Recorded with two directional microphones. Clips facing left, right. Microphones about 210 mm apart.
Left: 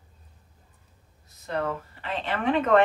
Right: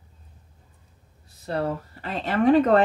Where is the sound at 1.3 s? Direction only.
35° right (ahead or behind).